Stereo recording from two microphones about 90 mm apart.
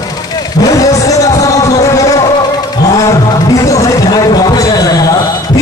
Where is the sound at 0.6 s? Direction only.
40° left (ahead or behind).